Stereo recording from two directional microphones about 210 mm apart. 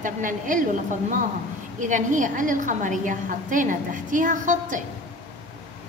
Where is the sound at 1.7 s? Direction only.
35° right (ahead or behind).